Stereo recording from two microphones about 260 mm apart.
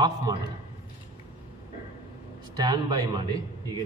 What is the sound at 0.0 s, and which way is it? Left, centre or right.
Speech, centre.